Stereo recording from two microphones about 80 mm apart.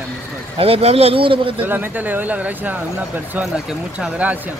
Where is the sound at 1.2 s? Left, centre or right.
Right.